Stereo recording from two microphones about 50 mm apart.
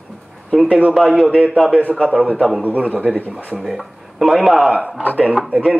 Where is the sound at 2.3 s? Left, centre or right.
Centre.